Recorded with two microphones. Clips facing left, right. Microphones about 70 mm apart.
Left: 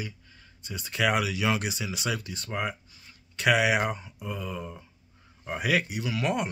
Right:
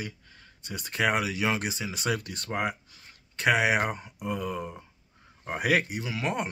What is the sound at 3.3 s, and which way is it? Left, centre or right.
Speech, right.